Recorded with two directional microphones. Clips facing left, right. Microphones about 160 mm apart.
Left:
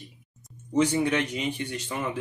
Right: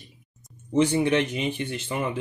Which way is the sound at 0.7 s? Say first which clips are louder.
Right 2 dB; 25° right (ahead or behind).